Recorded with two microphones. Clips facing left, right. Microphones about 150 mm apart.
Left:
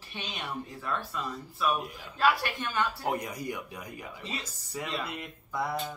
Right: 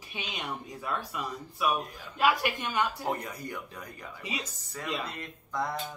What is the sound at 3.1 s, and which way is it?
Speech, 15° left (ahead or behind).